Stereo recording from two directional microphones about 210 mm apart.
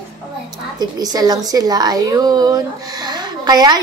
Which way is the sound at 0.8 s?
20° right (ahead or behind).